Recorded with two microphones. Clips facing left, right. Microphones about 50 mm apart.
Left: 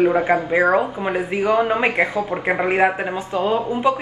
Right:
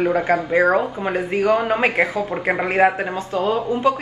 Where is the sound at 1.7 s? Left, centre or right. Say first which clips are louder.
Even; centre.